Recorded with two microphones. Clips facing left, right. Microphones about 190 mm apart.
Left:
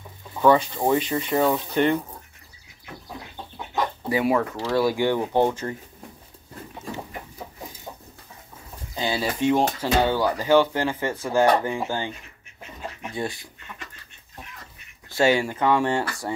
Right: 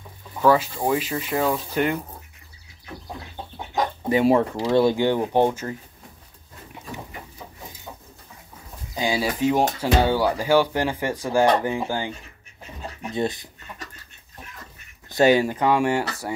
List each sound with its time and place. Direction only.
0.4 s speech: centre (ahead or behind)
3.7 s chicken: 25° right (ahead or behind)
4.6 s speech: 20° right (ahead or behind)
8.9 s speech: 10° right (ahead or behind)
13.1 s speech: 20° right (ahead or behind)
15.0 s speech: 20° right (ahead or behind)